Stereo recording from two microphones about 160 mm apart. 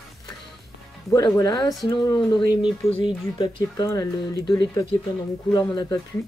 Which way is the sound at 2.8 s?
40° left (ahead or behind).